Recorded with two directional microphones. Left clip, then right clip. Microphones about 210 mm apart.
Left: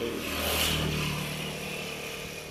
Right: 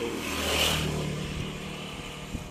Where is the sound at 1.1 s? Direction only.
25° left (ahead or behind).